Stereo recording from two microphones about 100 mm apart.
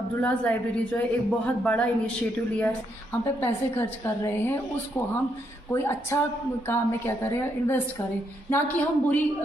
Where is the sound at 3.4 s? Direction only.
20° left (ahead or behind).